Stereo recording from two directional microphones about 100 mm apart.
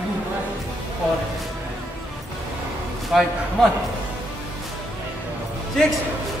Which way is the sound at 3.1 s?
Centre (ahead or behind).